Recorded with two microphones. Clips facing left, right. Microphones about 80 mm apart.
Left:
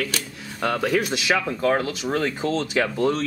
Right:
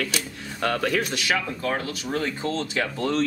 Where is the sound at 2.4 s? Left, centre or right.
Left.